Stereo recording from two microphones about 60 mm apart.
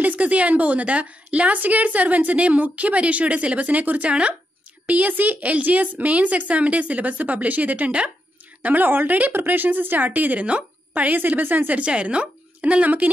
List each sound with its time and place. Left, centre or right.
0.0 s a woman's voice: right